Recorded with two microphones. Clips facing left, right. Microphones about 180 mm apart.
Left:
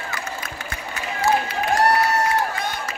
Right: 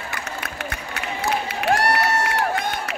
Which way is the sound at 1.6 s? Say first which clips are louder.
Even; 70° right (ahead or behind).